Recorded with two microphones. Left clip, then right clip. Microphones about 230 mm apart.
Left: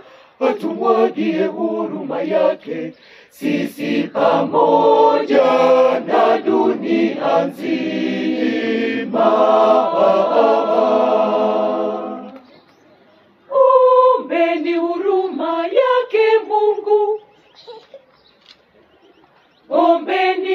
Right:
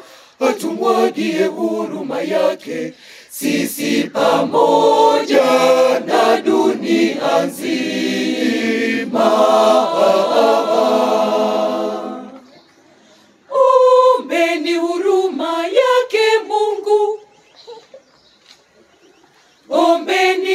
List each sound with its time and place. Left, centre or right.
0.4 s choir: right
9.1 s chant: right
13.5 s chant: right
19.7 s mantra: right